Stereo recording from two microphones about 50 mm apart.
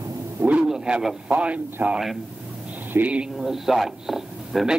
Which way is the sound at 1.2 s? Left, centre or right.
Right.